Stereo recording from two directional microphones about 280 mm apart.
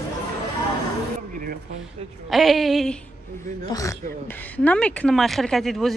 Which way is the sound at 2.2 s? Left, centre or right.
Centre.